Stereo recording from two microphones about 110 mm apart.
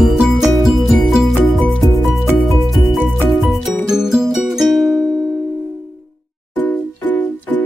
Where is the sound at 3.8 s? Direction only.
5° right (ahead or behind).